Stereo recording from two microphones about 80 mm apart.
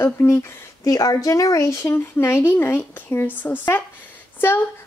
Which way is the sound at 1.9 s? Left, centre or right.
Left.